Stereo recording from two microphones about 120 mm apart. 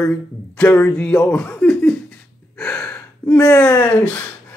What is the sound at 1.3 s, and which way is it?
Speech, 5° left (ahead or behind).